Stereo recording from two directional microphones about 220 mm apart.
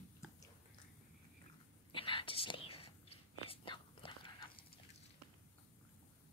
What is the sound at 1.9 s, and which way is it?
Whispering, 25° left (ahead or behind).